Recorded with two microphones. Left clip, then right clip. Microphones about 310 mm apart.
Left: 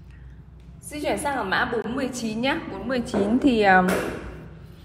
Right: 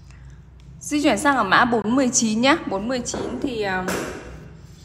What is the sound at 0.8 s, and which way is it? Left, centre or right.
A woman's voice, right.